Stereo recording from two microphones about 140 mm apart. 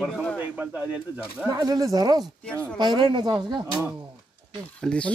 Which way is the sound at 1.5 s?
25° right (ahead or behind).